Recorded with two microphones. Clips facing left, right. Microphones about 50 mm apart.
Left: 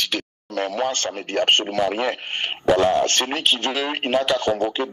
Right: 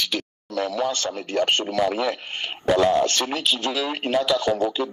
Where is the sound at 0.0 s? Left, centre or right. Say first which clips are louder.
Left 1 dB; left.